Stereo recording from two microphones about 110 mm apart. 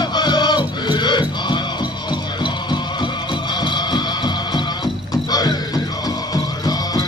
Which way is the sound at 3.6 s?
45° left (ahead or behind).